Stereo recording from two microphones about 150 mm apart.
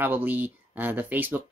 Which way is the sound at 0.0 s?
15° right (ahead or behind).